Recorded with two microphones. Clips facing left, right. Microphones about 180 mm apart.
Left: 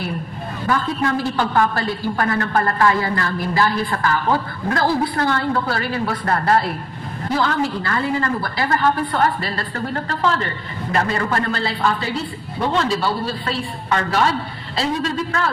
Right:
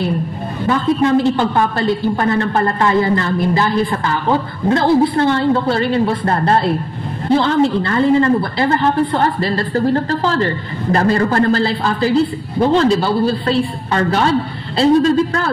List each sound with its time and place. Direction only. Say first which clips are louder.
0.7 s a man's voice: right 6 dB; 20° right (ahead or behind)